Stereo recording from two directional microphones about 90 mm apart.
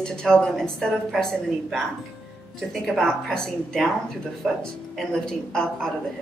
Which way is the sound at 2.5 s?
5° left (ahead or behind).